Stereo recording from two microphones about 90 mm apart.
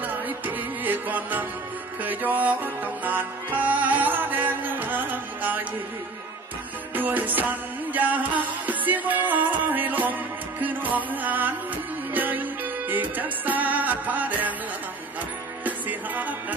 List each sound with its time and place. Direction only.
0.0 s music: 20° right (ahead or behind)
7.0 s music: 20° right (ahead or behind)
15.6 s music: 20° right (ahead or behind)